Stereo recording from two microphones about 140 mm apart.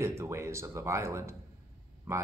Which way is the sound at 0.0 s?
20° right (ahead or behind).